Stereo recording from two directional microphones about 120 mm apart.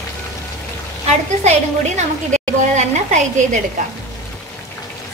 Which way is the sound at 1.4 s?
70° right (ahead or behind).